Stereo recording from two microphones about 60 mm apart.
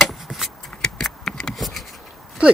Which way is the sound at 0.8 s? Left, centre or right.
Centre.